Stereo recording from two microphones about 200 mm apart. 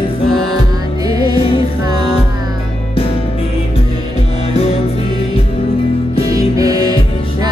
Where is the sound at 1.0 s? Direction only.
20° right (ahead or behind).